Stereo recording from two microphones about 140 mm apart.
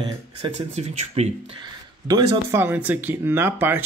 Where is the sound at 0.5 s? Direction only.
50° right (ahead or behind).